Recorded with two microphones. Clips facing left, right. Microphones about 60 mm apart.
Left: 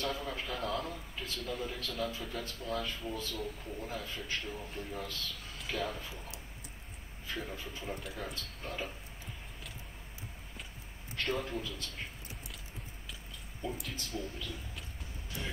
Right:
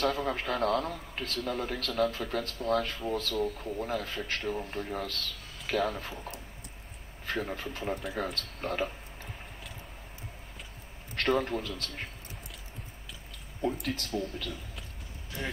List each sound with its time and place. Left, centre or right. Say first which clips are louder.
0.0 s speech: right 7 dB; right
11.1 s speech: right 7 dB; right
13.3 s speech: right 8 dB; right